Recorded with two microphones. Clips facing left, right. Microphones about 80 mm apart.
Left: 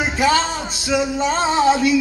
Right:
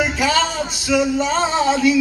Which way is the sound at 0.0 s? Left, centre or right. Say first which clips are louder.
Left 1 dB; left.